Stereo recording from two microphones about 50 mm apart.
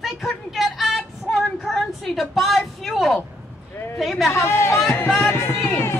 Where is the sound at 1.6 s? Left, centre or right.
Centre.